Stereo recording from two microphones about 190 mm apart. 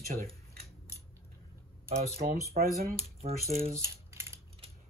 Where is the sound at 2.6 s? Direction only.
40° right (ahead or behind).